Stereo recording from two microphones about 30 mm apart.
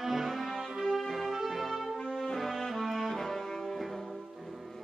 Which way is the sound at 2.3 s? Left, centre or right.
Centre.